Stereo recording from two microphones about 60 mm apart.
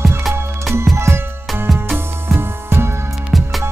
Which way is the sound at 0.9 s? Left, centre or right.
Right.